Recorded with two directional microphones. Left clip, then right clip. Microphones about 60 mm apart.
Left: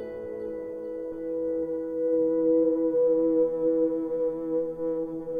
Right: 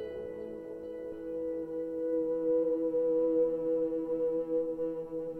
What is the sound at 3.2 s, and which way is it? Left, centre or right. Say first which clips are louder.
Music: left 5 dB; centre.